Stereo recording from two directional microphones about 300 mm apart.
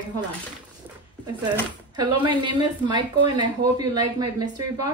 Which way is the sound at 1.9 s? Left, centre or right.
Centre.